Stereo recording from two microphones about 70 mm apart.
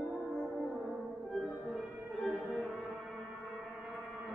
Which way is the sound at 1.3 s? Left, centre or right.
Centre.